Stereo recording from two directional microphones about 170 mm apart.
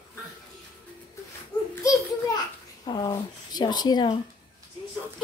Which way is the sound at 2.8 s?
25° left (ahead or behind).